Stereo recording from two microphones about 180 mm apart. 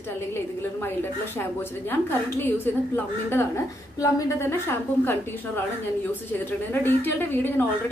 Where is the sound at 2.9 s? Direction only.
10° left (ahead or behind).